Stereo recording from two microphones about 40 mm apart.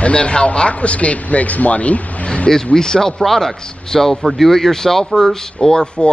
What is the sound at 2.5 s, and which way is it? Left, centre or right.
A man's voice, centre.